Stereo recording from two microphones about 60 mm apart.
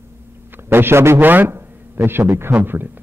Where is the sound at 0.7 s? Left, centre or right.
Right.